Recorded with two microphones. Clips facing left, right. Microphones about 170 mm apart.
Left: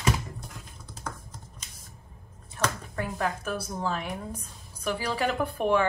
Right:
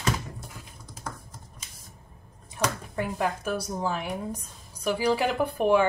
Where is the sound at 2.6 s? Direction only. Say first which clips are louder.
Right 2 dB; 10° right (ahead or behind).